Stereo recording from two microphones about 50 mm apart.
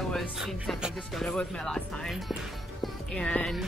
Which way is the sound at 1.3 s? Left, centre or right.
Centre.